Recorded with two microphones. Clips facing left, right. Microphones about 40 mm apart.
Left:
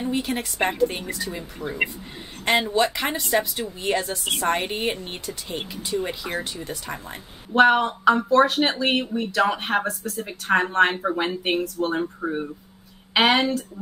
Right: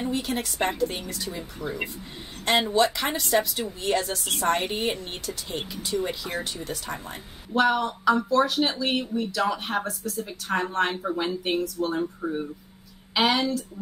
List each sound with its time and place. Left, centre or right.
0.1 s a woman's voice: centre
7.5 s speech: left